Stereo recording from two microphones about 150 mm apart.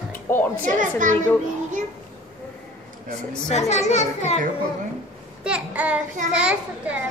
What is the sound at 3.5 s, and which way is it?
Speech, 50° left (ahead or behind).